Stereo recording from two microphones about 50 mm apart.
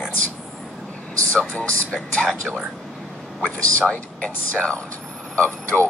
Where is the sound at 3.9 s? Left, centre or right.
Left.